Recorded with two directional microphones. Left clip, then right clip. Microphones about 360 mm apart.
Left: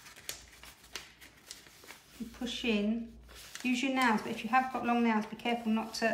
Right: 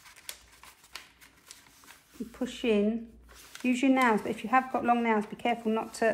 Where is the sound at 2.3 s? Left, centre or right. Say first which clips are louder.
Right 5 dB; centre.